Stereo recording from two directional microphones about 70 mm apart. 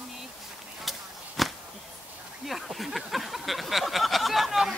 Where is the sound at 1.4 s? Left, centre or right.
Centre.